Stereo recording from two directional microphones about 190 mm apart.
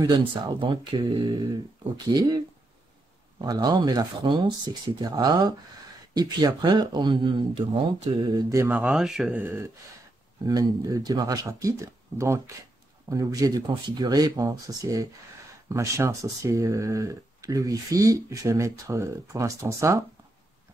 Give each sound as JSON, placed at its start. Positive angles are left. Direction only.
{"t": 0.0, "sound": "speech", "side_deg": -25}